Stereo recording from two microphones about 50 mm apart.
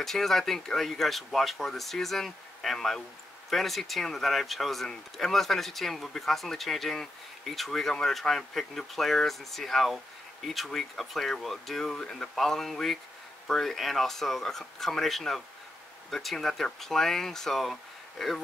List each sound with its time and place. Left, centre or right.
0.0 s speech: centre